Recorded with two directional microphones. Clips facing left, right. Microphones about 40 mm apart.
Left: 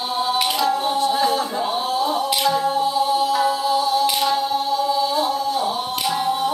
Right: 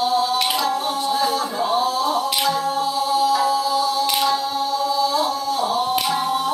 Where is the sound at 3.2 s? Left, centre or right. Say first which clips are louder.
Right 1 dB; left.